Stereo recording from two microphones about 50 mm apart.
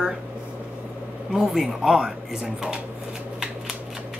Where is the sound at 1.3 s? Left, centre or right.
Centre.